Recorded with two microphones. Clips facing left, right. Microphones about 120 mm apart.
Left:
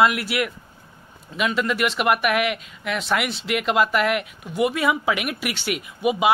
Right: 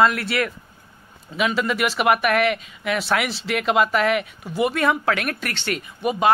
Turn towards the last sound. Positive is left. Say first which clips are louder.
# even
turn(degrees=5)  # may be behind; listen again after turning